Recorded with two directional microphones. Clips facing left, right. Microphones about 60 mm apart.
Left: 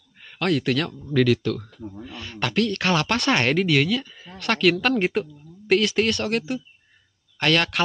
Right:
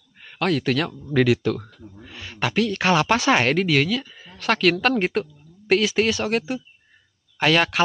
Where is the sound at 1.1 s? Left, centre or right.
Centre.